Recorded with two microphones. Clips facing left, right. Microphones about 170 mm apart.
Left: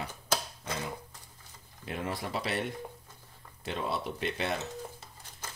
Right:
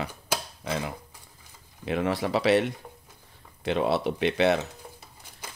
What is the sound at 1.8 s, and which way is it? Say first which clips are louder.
Speech: right 9 dB; 90° right.